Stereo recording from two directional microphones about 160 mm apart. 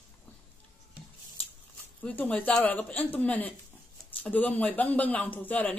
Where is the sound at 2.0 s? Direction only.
10° left (ahead or behind).